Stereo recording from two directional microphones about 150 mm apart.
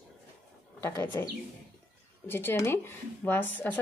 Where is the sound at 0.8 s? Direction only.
15° left (ahead or behind).